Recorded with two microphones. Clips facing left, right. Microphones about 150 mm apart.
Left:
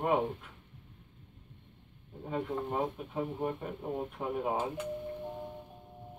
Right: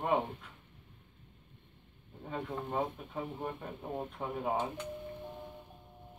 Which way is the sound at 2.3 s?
10° left (ahead or behind).